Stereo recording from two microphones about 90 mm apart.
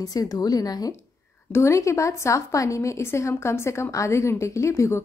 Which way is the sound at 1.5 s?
35° left (ahead or behind).